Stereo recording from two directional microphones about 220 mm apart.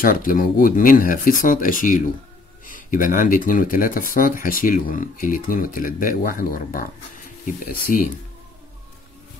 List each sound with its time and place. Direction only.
0.0 s speech: 40° left (ahead or behind)